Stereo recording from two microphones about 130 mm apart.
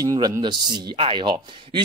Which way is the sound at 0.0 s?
30° right (ahead or behind).